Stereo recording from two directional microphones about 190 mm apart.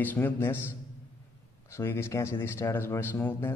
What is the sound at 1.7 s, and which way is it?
A man's voice, 15° left (ahead or behind).